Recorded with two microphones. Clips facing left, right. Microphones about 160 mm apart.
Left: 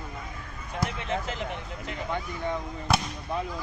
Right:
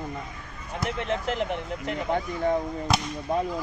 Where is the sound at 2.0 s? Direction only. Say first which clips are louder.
Right 6 dB; 45° right (ahead or behind).